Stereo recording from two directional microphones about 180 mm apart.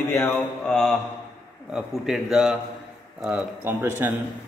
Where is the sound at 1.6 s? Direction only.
5° right (ahead or behind).